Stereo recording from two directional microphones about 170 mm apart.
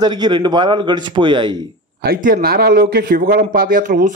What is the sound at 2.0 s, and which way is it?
A man's voice, 55° right (ahead or behind).